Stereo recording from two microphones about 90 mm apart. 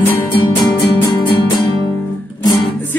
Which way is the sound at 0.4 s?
60° left (ahead or behind).